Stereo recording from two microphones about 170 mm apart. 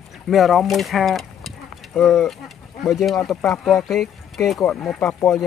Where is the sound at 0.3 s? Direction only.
Centre (ahead or behind).